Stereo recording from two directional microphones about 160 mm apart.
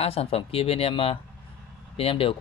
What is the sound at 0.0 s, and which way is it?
Speech, 40° left (ahead or behind).